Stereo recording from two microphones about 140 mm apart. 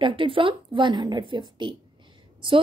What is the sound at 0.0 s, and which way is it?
Speech, 40° right (ahead or behind).